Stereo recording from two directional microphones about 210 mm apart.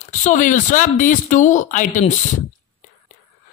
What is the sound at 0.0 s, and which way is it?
Speech, 35° left (ahead or behind).